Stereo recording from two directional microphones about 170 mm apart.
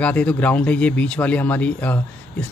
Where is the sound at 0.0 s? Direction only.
10° left (ahead or behind).